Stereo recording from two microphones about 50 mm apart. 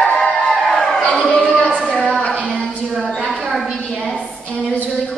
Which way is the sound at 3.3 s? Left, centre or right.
Centre.